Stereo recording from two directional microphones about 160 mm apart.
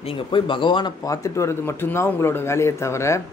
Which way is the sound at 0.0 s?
35° left (ahead or behind).